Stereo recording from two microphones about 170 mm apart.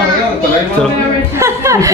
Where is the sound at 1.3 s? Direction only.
15° right (ahead or behind).